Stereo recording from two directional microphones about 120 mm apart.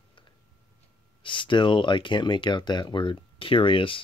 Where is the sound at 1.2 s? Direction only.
45° left (ahead or behind).